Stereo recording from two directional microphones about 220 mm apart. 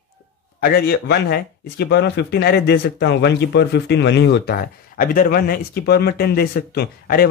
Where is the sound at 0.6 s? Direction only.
45° left (ahead or behind).